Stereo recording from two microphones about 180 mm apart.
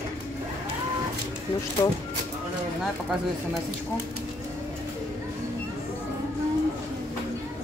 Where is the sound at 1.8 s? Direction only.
20° left (ahead or behind).